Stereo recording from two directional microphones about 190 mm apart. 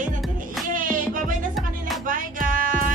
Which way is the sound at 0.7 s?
45° right (ahead or behind).